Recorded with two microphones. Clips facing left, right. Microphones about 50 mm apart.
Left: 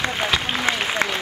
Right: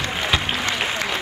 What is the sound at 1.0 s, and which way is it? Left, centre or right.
Applause, left.